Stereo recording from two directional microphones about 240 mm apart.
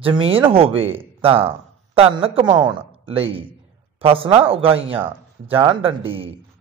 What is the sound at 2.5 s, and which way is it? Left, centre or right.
Speech, right.